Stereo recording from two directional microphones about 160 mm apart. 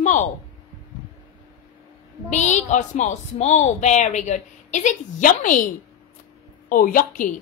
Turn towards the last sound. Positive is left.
turn(degrees=60)  # may be behind; listen again after turning